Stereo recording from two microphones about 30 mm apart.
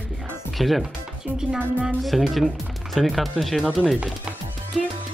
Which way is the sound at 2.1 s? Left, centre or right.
Centre.